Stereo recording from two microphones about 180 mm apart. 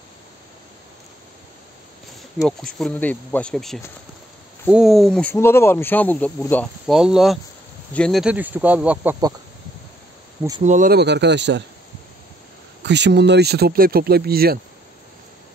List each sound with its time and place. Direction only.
2.4 s speech: 5° left (ahead or behind)
5.3 s speech: 15° left (ahead or behind)
6.9 s speech: centre (ahead or behind)
10.6 s speech: 45° right (ahead or behind)
10.9 s speech: 70° right (ahead or behind)
12.8 s speech: 75° right (ahead or behind); by 14.6 s 60° right (ahead or behind)